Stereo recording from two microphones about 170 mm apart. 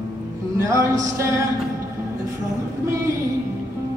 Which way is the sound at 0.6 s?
20° right (ahead or behind).